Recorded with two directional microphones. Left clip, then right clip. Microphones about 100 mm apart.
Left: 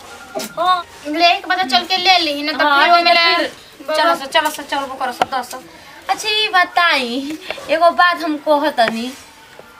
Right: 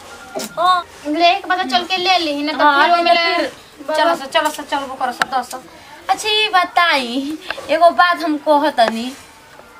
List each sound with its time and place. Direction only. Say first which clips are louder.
0.4 s speech: right 1 dB; 20° right (ahead or behind)
1.1 s a woman's voice: even; 10° left (ahead or behind)
6.0 s a woman's voice: right 1 dB; 15° right (ahead or behind)